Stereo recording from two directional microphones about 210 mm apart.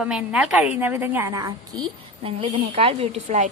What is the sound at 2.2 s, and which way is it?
A woman's voice, 25° right (ahead or behind).